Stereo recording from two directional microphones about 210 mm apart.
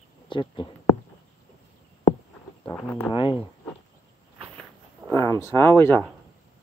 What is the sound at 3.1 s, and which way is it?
Speech, 25° left (ahead or behind).